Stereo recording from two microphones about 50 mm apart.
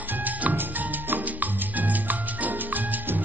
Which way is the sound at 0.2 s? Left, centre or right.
Right.